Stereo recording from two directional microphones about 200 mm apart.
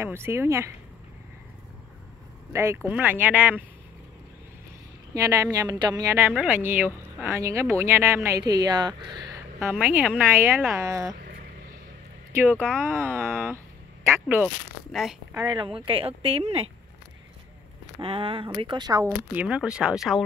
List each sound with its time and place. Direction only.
0.0 s speech: 10° right (ahead or behind)
2.5 s speech: 15° right (ahead or behind)
5.1 s speech: 15° right (ahead or behind)
9.6 s speech: 5° right (ahead or behind)
12.5 s speech: 5° left (ahead or behind)
13.0 s speech: 10° right (ahead or behind)
14.9 s speech: centre (ahead or behind)
15.3 s speech: 25° right (ahead or behind)
18.0 s speech: 25° right (ahead or behind)
19.3 s speech: 5° right (ahead or behind)